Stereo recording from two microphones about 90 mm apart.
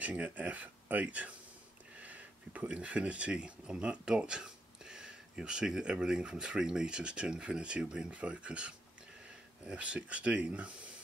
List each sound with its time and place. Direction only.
0.0 s speech: 15° right (ahead or behind)